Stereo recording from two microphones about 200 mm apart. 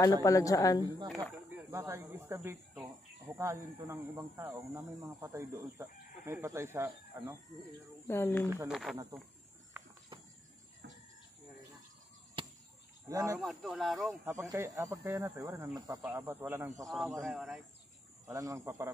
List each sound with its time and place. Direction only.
0.2 s speech: 15° left (ahead or behind)
1.0 s speech: centre (ahead or behind)
1.5 s speech: 15° right (ahead or behind)
8.1 s speech: 10° left (ahead or behind)
8.6 s speech: centre (ahead or behind)
9.8 s a sound: 20° right (ahead or behind)
12.4 s a sound: 25° right (ahead or behind)
13.1 s speech: 15° right (ahead or behind)
13.4 s speech: centre (ahead or behind)
14.2 s speech: 15° right (ahead or behind)
16.8 s speech: centre (ahead or behind)
18.2 s speech: 15° right (ahead or behind)